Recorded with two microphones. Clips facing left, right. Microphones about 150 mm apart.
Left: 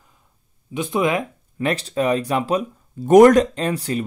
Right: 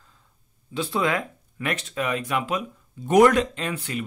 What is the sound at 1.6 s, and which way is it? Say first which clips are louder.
Speech: left 7 dB; 35° left (ahead or behind).